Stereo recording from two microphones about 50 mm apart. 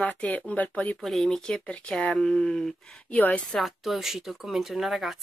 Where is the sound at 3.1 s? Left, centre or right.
Left.